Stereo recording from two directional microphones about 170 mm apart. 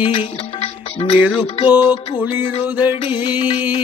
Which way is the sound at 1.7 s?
10° right (ahead or behind).